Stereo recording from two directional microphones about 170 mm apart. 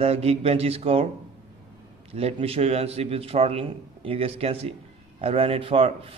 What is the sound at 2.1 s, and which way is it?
Speech, 35° right (ahead or behind).